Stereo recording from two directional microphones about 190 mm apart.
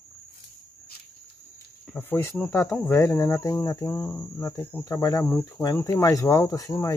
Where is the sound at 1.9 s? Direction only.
10° left (ahead or behind).